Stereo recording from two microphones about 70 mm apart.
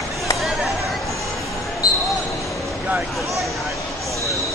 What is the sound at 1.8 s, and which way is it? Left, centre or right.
Basketball bounce, left.